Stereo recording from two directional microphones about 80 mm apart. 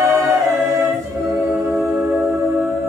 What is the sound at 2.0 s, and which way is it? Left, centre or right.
Music, right.